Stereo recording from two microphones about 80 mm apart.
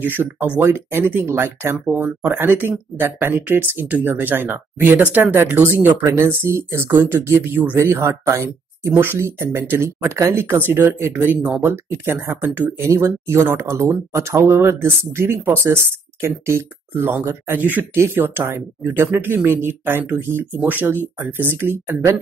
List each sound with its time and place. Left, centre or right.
0.0 s speech: right